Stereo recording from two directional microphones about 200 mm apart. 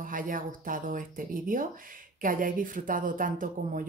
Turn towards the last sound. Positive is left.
turn(degrees=-40)  # may be behind; listen again after turning